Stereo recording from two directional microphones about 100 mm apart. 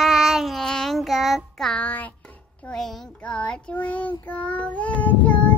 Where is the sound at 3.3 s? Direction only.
10° left (ahead or behind).